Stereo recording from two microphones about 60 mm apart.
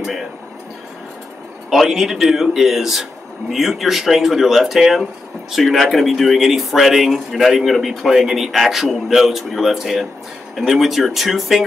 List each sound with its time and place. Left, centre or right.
1.7 s speech: centre